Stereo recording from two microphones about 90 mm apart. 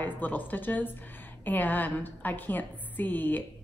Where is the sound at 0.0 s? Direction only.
20° left (ahead or behind).